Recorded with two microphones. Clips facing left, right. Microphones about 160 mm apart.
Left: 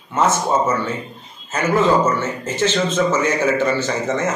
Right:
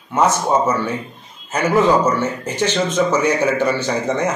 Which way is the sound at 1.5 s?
15° right (ahead or behind).